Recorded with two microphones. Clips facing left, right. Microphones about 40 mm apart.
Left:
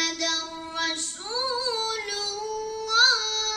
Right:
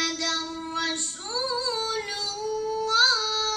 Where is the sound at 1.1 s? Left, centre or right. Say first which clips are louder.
Even; centre.